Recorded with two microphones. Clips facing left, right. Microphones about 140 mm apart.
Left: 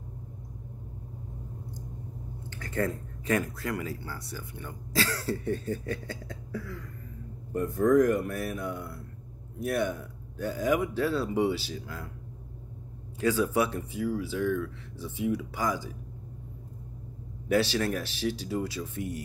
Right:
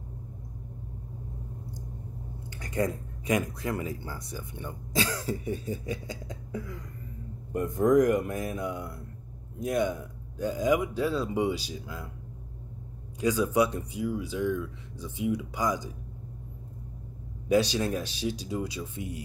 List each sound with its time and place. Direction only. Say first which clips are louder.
2.6 s speech: right 1 dB; 15° right (ahead or behind)
13.2 s speech: right 1 dB; 15° right (ahead or behind)
17.5 s speech: right 1 dB; 15° right (ahead or behind)